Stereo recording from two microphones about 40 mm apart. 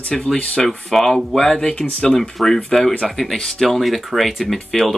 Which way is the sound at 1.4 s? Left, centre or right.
Centre.